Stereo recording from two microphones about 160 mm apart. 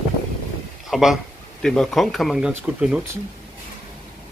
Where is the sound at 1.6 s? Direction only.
5° left (ahead or behind).